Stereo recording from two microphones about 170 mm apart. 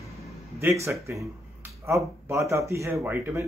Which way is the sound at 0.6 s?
15° right (ahead or behind).